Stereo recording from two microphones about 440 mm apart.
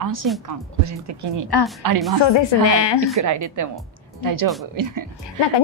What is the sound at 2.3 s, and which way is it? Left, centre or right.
Speech, left.